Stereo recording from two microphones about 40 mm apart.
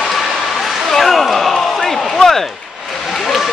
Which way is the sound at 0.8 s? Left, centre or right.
Centre.